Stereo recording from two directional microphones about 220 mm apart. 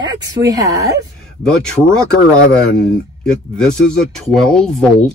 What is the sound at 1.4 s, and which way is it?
Speech, 5° left (ahead or behind).